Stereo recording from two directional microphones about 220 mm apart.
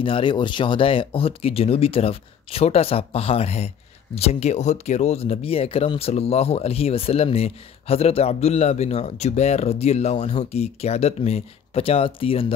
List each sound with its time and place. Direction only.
0.0 s speech: 20° left (ahead or behind)